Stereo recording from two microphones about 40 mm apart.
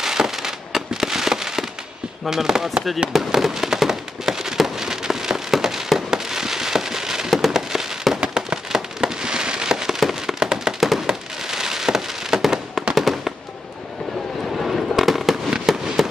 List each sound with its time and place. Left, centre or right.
0.0 s fireworks: centre
2.2 s speech: centre
3.1 s fireworks: centre
15.0 s fireworks: centre